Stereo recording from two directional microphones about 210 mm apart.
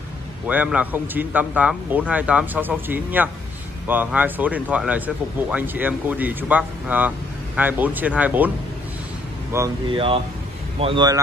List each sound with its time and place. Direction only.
0.5 s speech: 5° right (ahead or behind)
9.5 s speech: 10° right (ahead or behind)
9.8 s speech: 25° right (ahead or behind)